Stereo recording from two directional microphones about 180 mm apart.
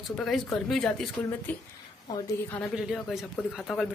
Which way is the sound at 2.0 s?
20° left (ahead or behind).